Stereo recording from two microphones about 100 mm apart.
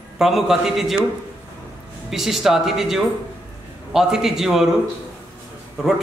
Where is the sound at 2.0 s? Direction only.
5° right (ahead or behind).